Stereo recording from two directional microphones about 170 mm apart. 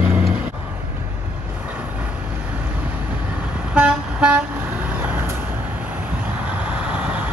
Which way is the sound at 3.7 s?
5° right (ahead or behind).